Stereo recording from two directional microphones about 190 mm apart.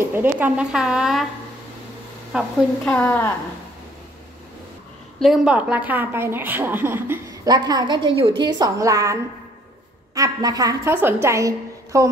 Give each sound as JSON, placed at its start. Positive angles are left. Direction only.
{"t": 0.0, "sound": "speech", "side_deg": -10}
{"t": 2.8, "sound": "a woman's voice", "side_deg": 10}
{"t": 5.2, "sound": "a woman's voice", "side_deg": -5}